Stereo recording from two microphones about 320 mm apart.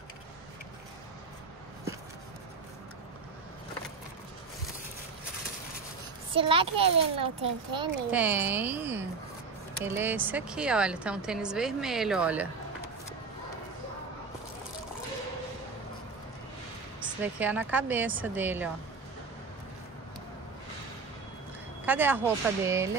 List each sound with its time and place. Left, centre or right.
6.3 s a child's voice: centre
8.1 s a woman's voice: centre
17.2 s a woman's voice: centre
21.8 s a child's voice: centre